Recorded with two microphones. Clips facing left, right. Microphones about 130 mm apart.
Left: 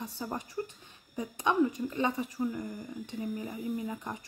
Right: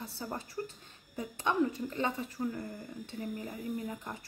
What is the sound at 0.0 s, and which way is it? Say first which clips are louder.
A woman's voice: left 3 dB; 15° left (ahead or behind).